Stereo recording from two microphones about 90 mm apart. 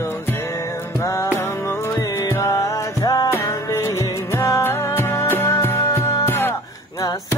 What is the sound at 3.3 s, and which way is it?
Music, 30° left (ahead or behind).